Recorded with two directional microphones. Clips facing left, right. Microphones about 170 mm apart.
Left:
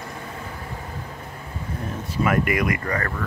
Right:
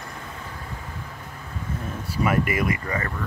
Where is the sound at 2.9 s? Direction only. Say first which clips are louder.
Left 2 dB; 20° right (ahead or behind).